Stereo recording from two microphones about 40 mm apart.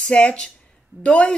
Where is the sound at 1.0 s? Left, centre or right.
Centre.